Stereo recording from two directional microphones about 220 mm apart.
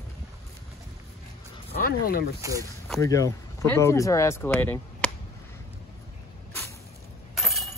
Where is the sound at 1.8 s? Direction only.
45° left (ahead or behind).